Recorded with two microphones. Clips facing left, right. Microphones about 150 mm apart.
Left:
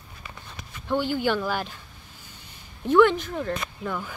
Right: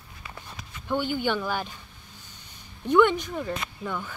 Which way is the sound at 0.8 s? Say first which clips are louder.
Left 2 dB; centre (ahead or behind).